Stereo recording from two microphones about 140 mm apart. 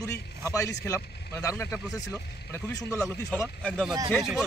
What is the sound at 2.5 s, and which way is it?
Speech, 20° left (ahead or behind).